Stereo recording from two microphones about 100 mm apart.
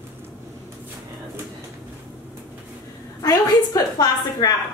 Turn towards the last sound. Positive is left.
turn(degrees=40)  # may be behind; listen again after turning